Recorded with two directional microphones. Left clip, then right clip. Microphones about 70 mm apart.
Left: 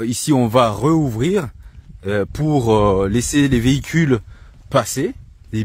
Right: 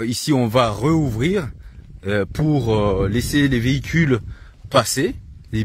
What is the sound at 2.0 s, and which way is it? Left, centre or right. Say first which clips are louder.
Speech: left 1 dB; left.